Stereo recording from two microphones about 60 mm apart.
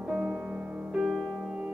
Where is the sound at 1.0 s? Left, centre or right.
Centre.